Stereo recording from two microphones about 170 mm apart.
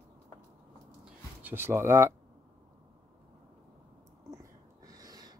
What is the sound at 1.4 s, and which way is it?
Speech, 15° right (ahead or behind).